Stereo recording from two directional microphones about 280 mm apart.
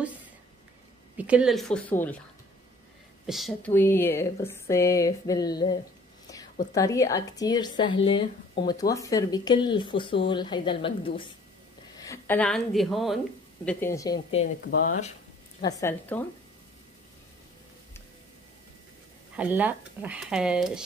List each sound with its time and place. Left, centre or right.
1.1 s speech: centre
3.3 s a woman's voice: centre
14.7 s speech: left
15.6 s speech: centre
19.3 s speech: centre